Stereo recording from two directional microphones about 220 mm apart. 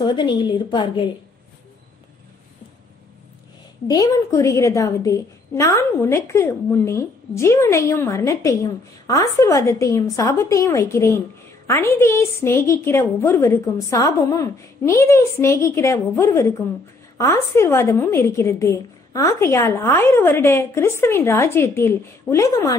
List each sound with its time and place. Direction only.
0.0 s a woman's voice: 20° left (ahead or behind)
3.8 s a woman's voice: 15° left (ahead or behind)